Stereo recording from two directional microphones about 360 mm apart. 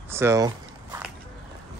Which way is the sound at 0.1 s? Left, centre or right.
Centre.